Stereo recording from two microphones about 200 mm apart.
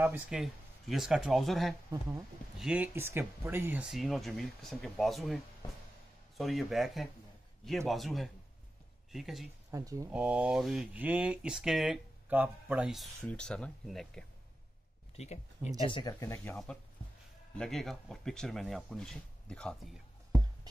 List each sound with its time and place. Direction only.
0.0 s speech: 5° right (ahead or behind)
9.7 s speech: 15° right (ahead or behind)
10.1 s speech: 5° right (ahead or behind)
15.1 s speech: 35° left (ahead or behind)
15.8 s speech: 25° left (ahead or behind)
17.6 s speech: centre (ahead or behind)